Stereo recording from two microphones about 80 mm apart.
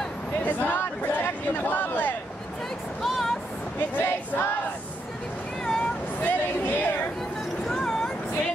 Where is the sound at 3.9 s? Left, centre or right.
Left.